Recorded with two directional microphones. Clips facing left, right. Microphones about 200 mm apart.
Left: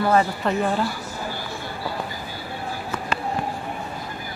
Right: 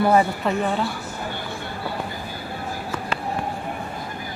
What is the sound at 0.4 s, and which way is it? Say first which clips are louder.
Speech: even; centre (ahead or behind).